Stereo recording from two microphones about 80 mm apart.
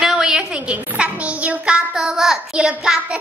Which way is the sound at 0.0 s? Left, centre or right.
Centre.